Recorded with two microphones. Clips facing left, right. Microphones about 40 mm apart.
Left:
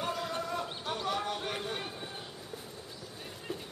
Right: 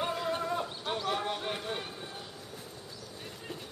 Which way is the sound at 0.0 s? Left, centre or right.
Right.